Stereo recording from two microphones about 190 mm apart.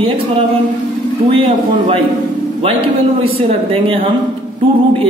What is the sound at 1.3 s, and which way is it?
Speech, 30° right (ahead or behind).